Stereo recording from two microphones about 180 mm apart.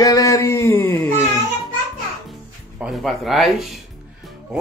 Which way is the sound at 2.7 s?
Centre (ahead or behind).